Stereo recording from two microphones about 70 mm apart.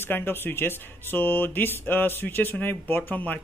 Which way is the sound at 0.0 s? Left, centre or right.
Left.